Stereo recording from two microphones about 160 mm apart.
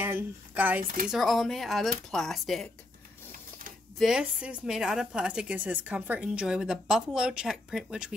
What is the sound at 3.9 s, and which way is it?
A woman's voice, 5° right (ahead or behind).